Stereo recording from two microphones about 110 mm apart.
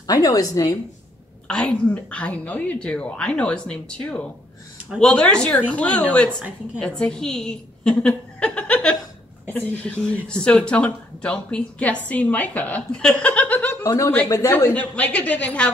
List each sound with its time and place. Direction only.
0.0 s a woman's voice: 35° left (ahead or behind)
1.5 s a woman's voice: 10° left (ahead or behind)
13.8 s a woman's voice: 30° left (ahead or behind)
14.5 s speech: 15° left (ahead or behind)